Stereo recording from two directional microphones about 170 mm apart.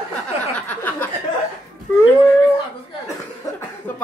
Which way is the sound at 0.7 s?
10° left (ahead or behind).